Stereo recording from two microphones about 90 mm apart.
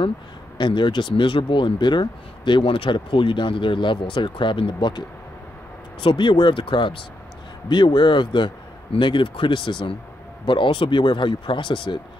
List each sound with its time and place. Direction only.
0.6 s speech: 60° left (ahead or behind)
6.0 s speech: 60° left (ahead or behind)
7.7 s speech: 55° left (ahead or behind)